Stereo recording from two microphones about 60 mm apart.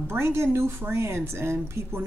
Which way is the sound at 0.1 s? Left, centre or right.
Right.